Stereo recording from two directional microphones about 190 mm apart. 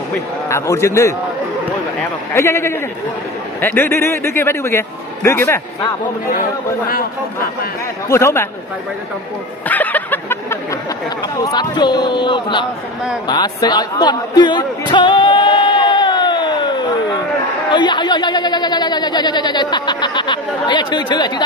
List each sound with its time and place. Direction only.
0.5 s a man's voice: 15° left (ahead or behind)
2.3 s a man's voice: 15° left (ahead or behind)
8.1 s a man's voice: 15° left (ahead or behind)
9.7 s a sound: 10° left (ahead or behind)
11.3 s a man's voice: 20° left (ahead or behind)
13.3 s a sound: 20° left (ahead or behind)
17.6 s a man's voice: 25° left (ahead or behind)